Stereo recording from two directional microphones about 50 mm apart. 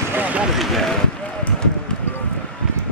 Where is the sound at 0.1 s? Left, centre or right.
Right.